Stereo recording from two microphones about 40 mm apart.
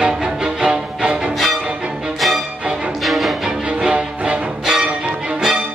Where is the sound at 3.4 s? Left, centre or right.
Centre.